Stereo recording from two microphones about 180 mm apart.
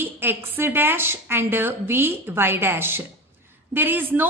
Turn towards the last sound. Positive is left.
turn(degrees=-10)  # may be behind; listen again after turning